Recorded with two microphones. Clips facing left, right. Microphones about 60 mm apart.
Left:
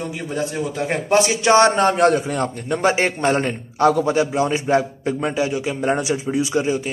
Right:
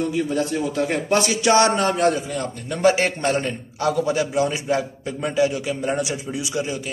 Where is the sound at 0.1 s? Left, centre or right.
Centre; by 2.5 s left.